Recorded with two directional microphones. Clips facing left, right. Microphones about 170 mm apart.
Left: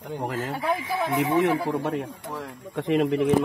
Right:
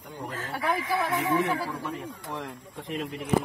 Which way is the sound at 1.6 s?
80° left.